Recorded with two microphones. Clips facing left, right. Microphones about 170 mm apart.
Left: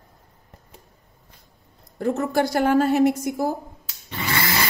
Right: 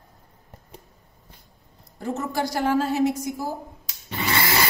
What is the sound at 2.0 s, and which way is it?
A woman's voice, 60° left (ahead or behind).